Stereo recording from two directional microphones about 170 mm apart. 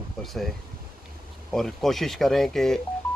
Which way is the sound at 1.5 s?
Centre (ahead or behind).